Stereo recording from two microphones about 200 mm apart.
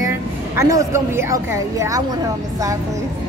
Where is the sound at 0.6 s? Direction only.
15° right (ahead or behind).